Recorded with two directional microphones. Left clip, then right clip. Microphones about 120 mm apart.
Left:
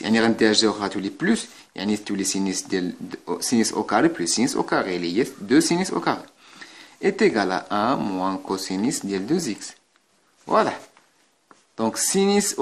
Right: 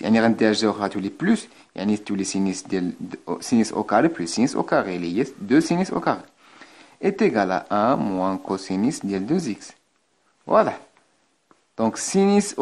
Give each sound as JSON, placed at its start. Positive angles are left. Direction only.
{"t": 0.0, "sound": "speech", "side_deg": -45}